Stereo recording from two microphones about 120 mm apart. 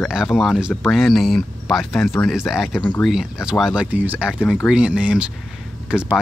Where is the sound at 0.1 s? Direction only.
Centre (ahead or behind).